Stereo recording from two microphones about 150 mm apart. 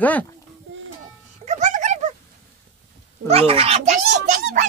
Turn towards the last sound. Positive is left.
turn(degrees=-55)  # may be behind; listen again after turning